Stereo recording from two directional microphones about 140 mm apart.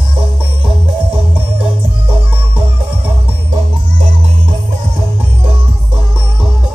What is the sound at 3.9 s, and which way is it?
Music, 55° right (ahead or behind).